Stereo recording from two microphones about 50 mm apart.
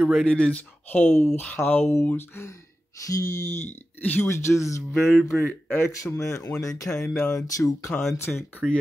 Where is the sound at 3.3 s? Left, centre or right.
Left.